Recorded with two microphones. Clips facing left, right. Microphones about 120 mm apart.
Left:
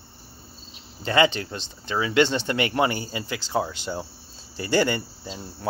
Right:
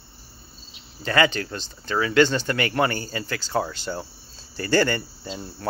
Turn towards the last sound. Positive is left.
turn(degrees=5)  # may be behind; listen again after turning